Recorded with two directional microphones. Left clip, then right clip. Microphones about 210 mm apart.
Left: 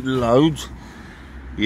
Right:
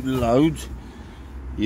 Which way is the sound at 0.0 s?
15° left (ahead or behind).